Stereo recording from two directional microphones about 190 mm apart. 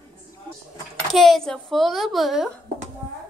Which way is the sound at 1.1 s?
Centre (ahead or behind).